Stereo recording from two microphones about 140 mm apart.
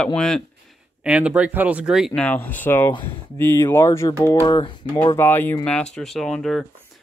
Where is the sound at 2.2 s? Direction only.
10° left (ahead or behind).